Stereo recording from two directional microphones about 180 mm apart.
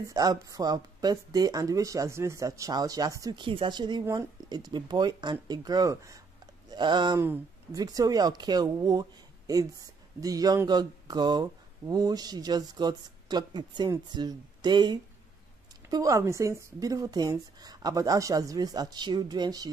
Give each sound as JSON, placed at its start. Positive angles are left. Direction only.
{"t": 0.0, "sound": "speech", "side_deg": -20}
{"t": 10.2, "sound": "speech", "side_deg": -20}